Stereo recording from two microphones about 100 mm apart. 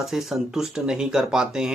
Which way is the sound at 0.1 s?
5° right (ahead or behind).